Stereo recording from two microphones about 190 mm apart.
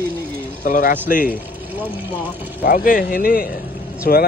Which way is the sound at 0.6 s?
45° left (ahead or behind).